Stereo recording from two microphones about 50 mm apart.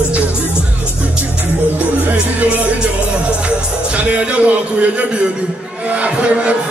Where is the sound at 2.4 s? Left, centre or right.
Right.